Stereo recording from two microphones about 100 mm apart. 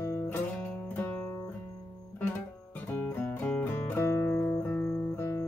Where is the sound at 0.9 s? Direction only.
20° left (ahead or behind).